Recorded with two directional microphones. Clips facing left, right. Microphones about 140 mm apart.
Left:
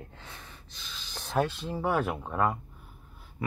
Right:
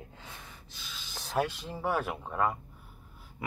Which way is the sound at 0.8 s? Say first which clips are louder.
Left 2 dB; 10° right (ahead or behind).